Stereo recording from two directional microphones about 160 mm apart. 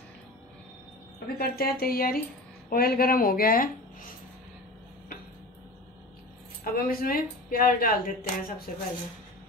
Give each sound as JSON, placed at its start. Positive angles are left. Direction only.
{"t": 1.2, "sound": "speech", "side_deg": 70}
{"t": 6.6, "sound": "speech", "side_deg": 65}